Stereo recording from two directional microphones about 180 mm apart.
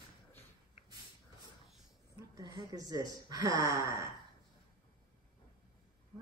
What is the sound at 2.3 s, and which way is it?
Speech, 20° right (ahead or behind).